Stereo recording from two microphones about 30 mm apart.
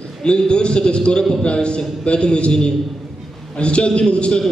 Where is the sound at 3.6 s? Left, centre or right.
Left.